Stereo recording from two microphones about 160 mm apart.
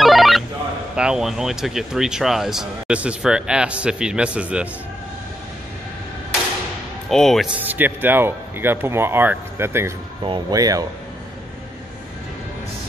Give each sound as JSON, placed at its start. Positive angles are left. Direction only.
{"t": 0.0, "sound": "telephone", "side_deg": 0}
{"t": 0.9, "sound": "speech", "side_deg": -5}
{"t": 7.1, "sound": "speech", "side_deg": 0}
{"t": 7.6, "sound": "speech", "side_deg": -10}
{"t": 10.2, "sound": "speech", "side_deg": -25}